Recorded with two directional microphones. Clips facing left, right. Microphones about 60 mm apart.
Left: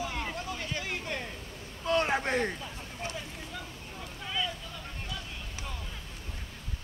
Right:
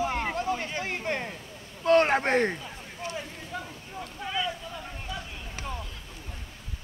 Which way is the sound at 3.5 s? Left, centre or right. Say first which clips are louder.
Right 7 dB; right.